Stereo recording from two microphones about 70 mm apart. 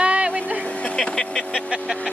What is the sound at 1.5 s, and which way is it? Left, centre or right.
Vehicle, centre.